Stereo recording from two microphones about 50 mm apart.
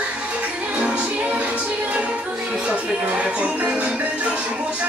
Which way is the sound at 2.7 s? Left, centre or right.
Right.